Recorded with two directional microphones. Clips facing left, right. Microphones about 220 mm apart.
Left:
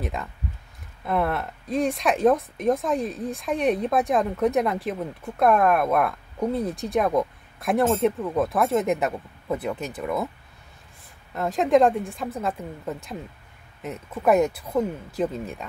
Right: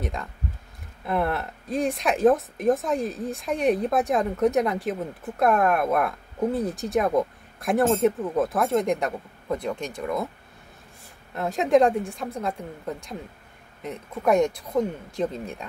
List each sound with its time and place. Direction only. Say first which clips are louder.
0.0 s speech: left 1 dB; centre (ahead or behind)
11.3 s speech: even; centre (ahead or behind)